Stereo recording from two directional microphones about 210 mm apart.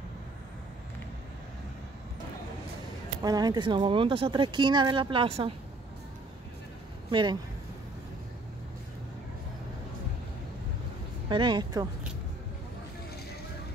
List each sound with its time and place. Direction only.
3.2 s speech: 20° right (ahead or behind)
7.1 s speech: 20° right (ahead or behind)
11.2 s speech: 20° right (ahead or behind)